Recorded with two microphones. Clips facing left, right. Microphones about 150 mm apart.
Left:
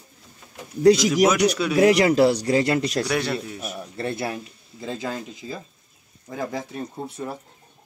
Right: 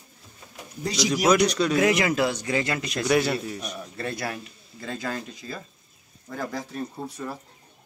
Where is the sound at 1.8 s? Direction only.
35° left (ahead or behind).